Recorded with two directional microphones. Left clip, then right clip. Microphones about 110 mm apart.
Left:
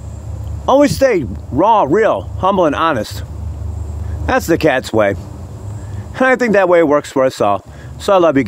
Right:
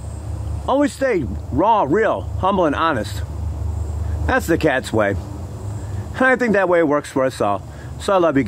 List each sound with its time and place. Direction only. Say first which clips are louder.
0.7 s speech: left 7 dB; 30° left (ahead or behind)
4.3 s speech: left 4 dB; 35° left (ahead or behind)
6.1 s speech: left 4 dB; 35° left (ahead or behind)